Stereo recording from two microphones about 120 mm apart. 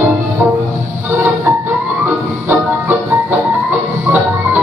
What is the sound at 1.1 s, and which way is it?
Music, 25° right (ahead or behind).